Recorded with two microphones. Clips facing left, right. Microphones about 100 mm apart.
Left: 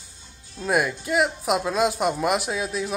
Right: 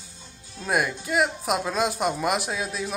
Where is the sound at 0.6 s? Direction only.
Centre (ahead or behind).